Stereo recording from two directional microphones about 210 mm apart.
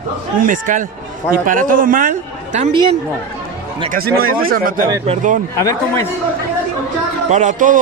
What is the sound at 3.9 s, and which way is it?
Speech, 45° right (ahead or behind).